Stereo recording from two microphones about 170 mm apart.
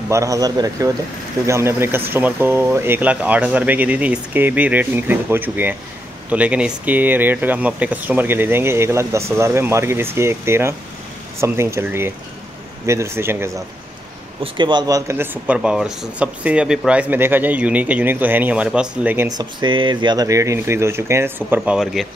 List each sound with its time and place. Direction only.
0.1 s speech: 20° right (ahead or behind)
14.4 s speech: 25° right (ahead or behind); by 19.2 s 5° right (ahead or behind)
19.2 s speech: 25° right (ahead or behind); by 22.0 s 5° right (ahead or behind)